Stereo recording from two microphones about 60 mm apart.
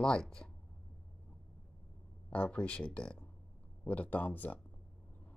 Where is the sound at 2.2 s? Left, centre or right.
Left.